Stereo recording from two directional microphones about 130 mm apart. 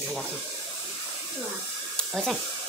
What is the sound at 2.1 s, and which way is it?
Speech, centre (ahead or behind).